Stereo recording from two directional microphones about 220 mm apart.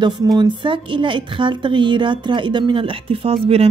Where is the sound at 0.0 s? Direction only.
20° right (ahead or behind).